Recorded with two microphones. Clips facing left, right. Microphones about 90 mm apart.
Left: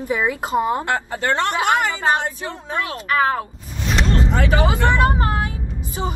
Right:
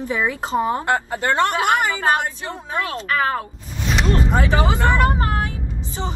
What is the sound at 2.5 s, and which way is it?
Speech, 20° right (ahead or behind).